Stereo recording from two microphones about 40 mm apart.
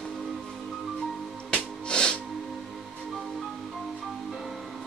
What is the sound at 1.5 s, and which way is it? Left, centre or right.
Music, left.